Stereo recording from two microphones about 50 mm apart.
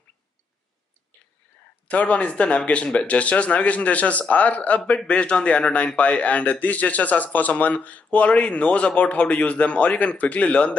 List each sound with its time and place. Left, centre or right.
1.9 s speech: left